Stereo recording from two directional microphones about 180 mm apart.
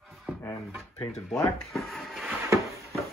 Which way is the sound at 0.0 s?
Centre (ahead or behind).